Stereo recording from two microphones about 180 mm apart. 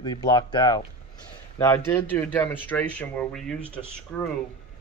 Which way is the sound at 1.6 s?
15° left (ahead or behind).